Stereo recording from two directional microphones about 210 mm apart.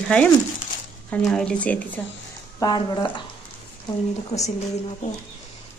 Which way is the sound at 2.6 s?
20° left (ahead or behind).